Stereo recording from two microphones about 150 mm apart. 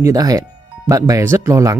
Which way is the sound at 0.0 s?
25° right (ahead or behind).